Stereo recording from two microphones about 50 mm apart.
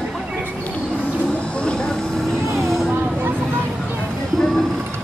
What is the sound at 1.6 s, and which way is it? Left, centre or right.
Vehicle, centre.